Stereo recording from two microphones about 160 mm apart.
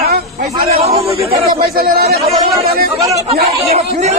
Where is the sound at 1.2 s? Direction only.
75° right (ahead or behind).